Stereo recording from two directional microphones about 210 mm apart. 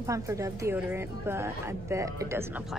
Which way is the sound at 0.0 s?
15° right (ahead or behind).